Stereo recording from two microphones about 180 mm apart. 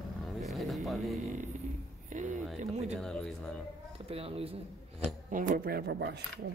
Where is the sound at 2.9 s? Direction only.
5° left (ahead or behind).